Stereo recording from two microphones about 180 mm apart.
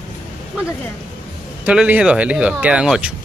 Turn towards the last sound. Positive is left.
turn(degrees=-5)  # may be behind; listen again after turning